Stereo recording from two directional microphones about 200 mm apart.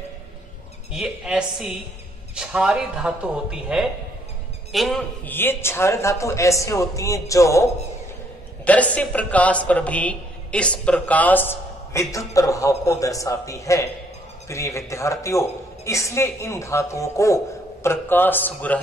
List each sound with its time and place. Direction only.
0.9 s a man's voice: 5° right (ahead or behind)